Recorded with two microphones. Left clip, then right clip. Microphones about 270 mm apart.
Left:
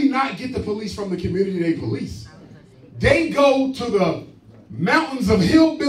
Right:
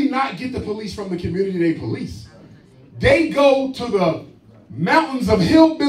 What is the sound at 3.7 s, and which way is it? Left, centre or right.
A man's voice, right.